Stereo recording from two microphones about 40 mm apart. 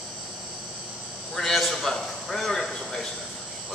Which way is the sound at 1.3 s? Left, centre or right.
Centre.